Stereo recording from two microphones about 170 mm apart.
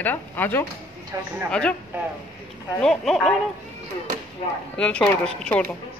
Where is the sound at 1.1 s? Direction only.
20° right (ahead or behind).